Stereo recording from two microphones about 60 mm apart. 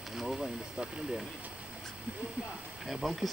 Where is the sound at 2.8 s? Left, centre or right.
Centre.